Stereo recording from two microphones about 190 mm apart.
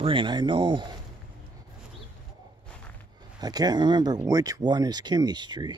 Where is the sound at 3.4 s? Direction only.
20° right (ahead or behind).